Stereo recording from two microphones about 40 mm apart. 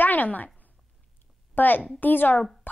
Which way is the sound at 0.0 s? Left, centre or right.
Left.